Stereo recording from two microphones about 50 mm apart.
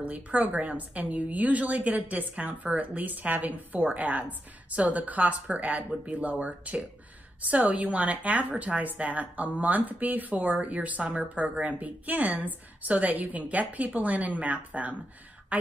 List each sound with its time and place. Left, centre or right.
0.0 s a woman's voice: right